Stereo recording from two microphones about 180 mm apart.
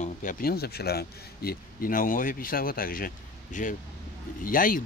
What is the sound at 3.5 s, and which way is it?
Speech, 45° left (ahead or behind).